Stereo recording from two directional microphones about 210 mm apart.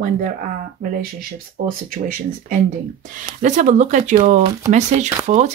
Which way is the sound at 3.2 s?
35° right (ahead or behind).